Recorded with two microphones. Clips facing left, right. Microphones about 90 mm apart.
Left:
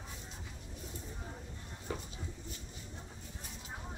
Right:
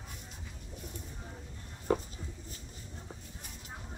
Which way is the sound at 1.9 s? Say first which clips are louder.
Right 11 dB; 50° right (ahead or behind).